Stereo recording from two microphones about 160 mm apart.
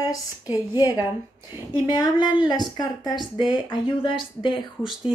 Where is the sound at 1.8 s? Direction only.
25° left (ahead or behind).